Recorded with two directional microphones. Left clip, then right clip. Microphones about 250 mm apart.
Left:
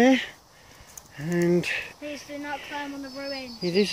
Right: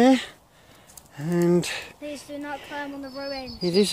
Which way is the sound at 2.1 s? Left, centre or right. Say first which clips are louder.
Even; right.